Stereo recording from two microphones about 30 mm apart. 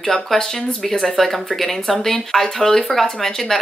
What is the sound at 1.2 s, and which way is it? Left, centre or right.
Speech, centre.